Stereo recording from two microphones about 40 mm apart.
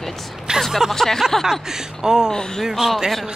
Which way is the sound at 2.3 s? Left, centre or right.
Centre.